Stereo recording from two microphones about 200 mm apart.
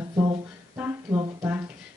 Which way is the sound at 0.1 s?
25° right (ahead or behind).